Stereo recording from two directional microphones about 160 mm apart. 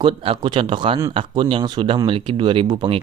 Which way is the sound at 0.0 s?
30° right (ahead or behind).